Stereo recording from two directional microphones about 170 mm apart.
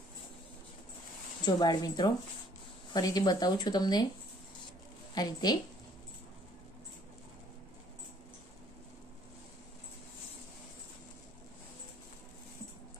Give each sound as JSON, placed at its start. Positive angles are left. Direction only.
{"t": 1.4, "sound": "speech", "side_deg": 25}
{"t": 5.1, "sound": "speech", "side_deg": 25}